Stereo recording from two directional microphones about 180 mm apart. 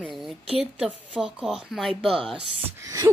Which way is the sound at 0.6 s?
5° right (ahead or behind).